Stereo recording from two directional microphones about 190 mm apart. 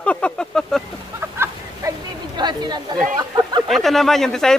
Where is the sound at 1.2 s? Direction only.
15° right (ahead or behind).